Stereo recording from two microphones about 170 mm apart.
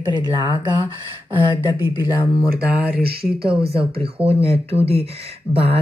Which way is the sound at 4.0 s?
35° right (ahead or behind).